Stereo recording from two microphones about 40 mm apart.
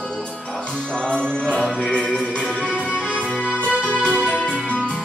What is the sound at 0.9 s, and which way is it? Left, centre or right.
Music, left.